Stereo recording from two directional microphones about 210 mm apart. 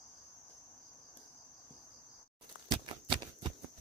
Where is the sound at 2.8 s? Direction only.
20° right (ahead or behind).